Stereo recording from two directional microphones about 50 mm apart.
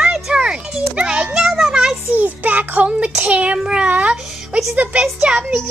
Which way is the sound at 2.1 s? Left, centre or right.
Right.